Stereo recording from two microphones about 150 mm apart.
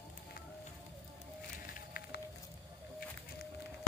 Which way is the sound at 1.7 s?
80° left.